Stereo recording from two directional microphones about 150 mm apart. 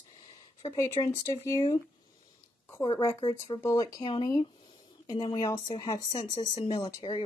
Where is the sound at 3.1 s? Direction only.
30° left (ahead or behind).